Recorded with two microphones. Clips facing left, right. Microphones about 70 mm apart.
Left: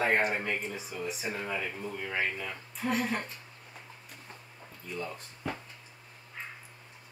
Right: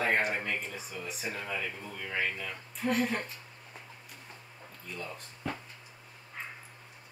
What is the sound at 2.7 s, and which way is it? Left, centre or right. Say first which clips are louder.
Speech: right 1 dB; centre.